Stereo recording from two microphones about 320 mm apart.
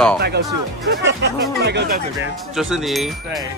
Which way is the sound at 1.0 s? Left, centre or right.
Right.